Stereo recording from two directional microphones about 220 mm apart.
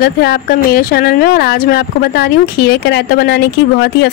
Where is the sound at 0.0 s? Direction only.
45° left (ahead or behind).